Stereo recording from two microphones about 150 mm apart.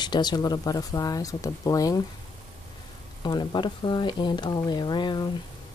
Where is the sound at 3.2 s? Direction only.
30° left (ahead or behind).